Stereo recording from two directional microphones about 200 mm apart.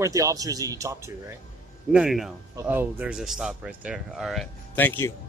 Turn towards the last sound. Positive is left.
turn(degrees=10)  # may be behind; listen again after turning